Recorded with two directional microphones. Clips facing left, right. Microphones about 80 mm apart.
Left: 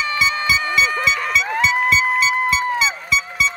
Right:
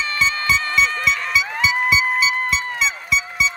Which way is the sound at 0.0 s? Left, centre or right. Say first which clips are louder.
Left 2 dB; centre.